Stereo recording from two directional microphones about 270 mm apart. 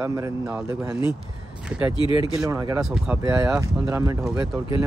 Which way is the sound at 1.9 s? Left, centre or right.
Centre.